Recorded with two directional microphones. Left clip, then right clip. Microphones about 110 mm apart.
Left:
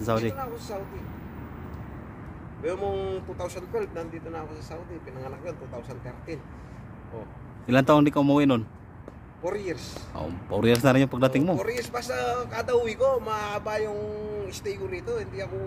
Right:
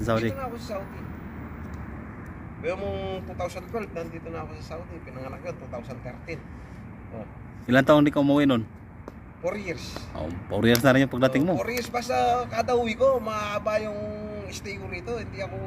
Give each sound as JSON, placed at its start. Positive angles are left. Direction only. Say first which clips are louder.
{"t": 0.1, "sound": "speech", "louder": "right 1 dB", "side_deg": 40}
{"t": 2.6, "sound": "speech", "louder": "left 1 dB", "side_deg": 55}
{"t": 7.6, "sound": "speech", "louder": "right 1 dB", "side_deg": 35}
{"t": 9.4, "sound": "speech", "louder": "even", "side_deg": 55}
{"t": 10.1, "sound": "speech", "louder": "left 1 dB", "side_deg": 35}
{"t": 10.7, "sound": "speech", "louder": "right 1 dB", "side_deg": 20}
{"t": 11.0, "sound": "speech", "louder": "right 1 dB", "side_deg": 35}
{"t": 11.8, "sound": "speech", "louder": "right 4 dB", "side_deg": 55}